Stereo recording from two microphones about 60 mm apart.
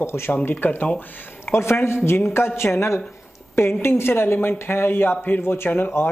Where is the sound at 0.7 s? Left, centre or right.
Left.